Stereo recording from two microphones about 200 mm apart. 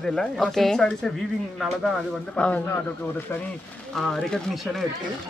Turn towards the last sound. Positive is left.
turn(degrees=0)  # may be behind; listen again after turning